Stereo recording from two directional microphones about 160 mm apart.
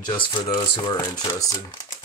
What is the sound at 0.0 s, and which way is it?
Speech, 25° left (ahead or behind).